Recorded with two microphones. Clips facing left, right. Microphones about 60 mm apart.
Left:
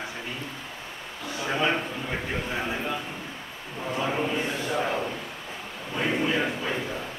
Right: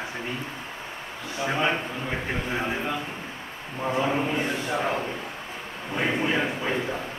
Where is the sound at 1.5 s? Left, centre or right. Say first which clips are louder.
Even; centre.